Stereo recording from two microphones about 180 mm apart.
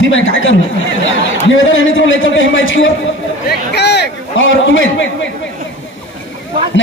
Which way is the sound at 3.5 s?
65° left (ahead or behind).